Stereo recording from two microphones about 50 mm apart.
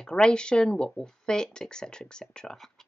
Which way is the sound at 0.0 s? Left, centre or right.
Centre.